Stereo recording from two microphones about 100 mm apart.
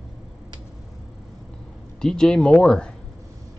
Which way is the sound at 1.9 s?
5° left (ahead or behind).